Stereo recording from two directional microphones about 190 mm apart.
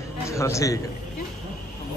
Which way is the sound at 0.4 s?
15° left (ahead or behind).